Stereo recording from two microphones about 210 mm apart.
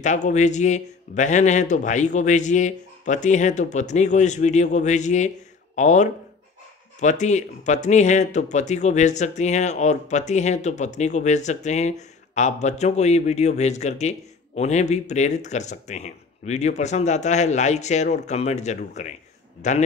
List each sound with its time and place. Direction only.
0.0 s speech: 35° left (ahead or behind)